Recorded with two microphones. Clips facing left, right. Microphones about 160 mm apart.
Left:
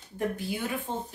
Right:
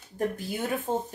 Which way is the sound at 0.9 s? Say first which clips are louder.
Right 5 dB; 45° right (ahead or behind).